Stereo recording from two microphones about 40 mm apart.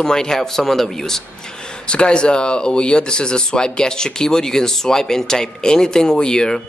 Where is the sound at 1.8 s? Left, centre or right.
Left.